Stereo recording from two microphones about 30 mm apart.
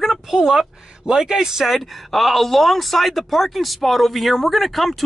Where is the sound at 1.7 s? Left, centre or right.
Centre.